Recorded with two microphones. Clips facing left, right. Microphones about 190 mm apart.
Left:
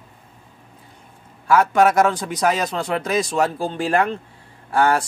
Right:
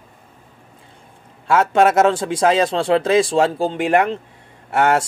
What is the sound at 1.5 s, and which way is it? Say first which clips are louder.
Speech: right 1 dB; 25° right (ahead or behind).